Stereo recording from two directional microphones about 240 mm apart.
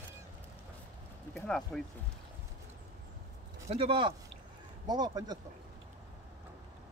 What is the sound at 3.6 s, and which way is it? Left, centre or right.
Speech, right.